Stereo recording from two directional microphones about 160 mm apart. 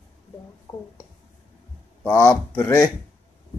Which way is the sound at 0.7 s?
20° left (ahead or behind).